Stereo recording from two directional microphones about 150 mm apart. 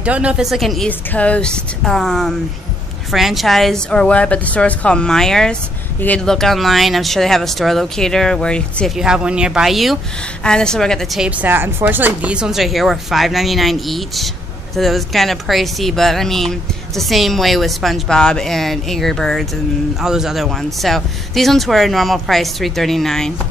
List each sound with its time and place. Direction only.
0.0 s a woman's voice: 10° right (ahead or behind)